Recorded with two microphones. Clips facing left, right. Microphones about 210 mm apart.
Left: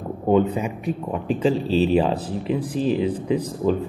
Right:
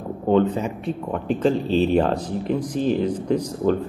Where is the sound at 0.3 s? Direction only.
10° left (ahead or behind).